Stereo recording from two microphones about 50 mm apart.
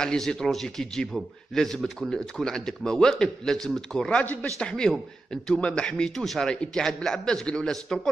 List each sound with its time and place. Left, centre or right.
0.0 s a man's voice: centre
4.1 s speech: left
4.6 s a man's voice: centre